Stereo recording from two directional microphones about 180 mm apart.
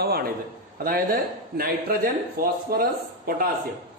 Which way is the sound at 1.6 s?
55° right (ahead or behind).